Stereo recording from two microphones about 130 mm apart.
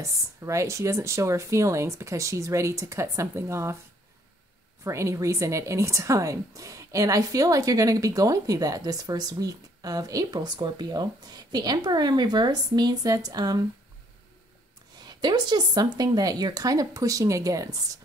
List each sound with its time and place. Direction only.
0.0 s a woman's voice: 25° right (ahead or behind)
4.8 s a woman's voice: 25° right (ahead or behind)
15.1 s a woman's voice: 35° right (ahead or behind)